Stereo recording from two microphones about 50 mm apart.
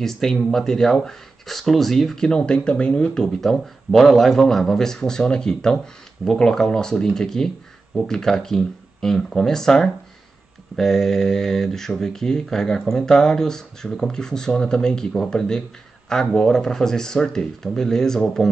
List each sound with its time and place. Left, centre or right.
0.0 s speech: centre
3.4 s speech: centre